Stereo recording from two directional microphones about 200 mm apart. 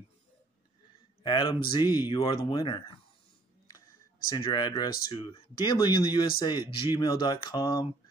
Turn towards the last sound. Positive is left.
turn(degrees=20)  # may be behind; listen again after turning